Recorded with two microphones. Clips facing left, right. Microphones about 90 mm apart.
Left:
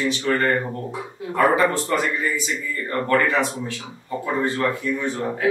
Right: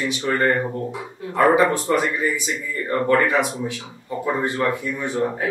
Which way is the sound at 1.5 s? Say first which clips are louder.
Right 2 dB; 15° right (ahead or behind).